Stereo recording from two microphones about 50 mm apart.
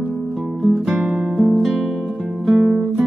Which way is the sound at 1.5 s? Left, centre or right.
Centre.